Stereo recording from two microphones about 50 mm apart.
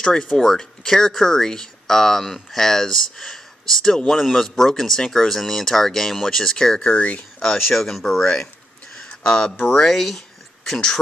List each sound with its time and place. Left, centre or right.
0.0 s speech: centre
6.8 s speech: left
7.4 s speech: centre
8.9 s a sound: centre
9.7 s speech: centre